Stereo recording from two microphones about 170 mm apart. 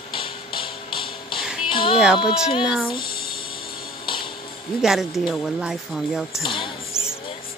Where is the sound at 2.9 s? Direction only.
60° left (ahead or behind).